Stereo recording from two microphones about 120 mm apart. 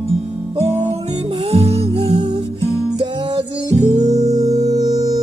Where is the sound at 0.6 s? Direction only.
60° right (ahead or behind).